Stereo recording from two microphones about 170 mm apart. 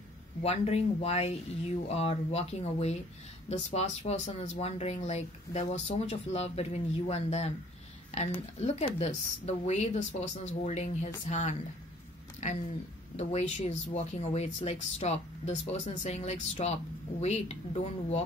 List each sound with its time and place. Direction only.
0.4 s speech: 40° left (ahead or behind)